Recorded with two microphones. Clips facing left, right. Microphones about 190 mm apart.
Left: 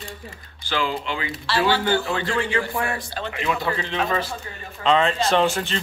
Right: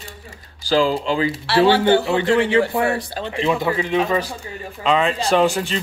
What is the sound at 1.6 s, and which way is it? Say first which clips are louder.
A man's voice: right 7 dB; 25° right (ahead or behind).